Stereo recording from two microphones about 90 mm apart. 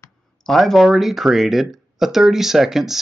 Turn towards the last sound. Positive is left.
turn(degrees=-5)  # may be behind; listen again after turning